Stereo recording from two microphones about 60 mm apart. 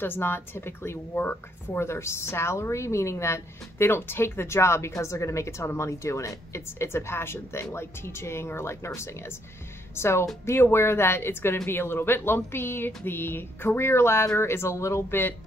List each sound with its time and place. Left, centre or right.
0.0 s speech: left
1.9 s speech: left